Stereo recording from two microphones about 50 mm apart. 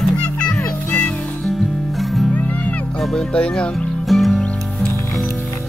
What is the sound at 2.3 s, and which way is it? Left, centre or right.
Music, left.